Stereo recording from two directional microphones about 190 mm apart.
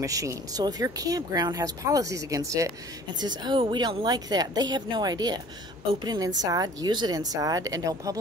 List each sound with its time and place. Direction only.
0.0 s speech: 15° right (ahead or behind)